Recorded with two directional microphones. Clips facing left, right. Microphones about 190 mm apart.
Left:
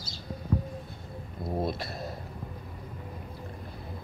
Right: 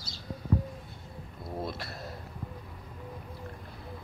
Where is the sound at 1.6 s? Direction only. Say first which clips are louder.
Left 5 dB; 15° left (ahead or behind).